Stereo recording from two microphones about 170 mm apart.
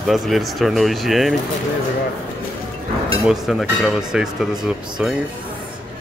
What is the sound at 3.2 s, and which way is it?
Speech, centre (ahead or behind).